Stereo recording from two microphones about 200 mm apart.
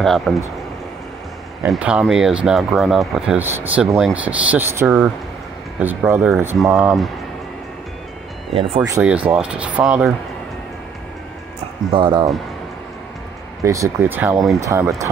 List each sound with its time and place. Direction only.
0.0 s speech: centre (ahead or behind)
1.7 s speech: 5° right (ahead or behind)
9.0 s speech: 5° right (ahead or behind)
11.9 s speech: 25° right (ahead or behind)
13.7 s speech: 15° right (ahead or behind)